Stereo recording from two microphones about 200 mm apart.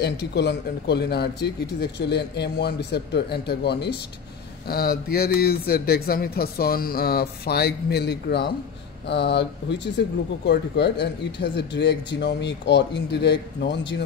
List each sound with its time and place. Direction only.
0.0 s speech: 60° left (ahead or behind)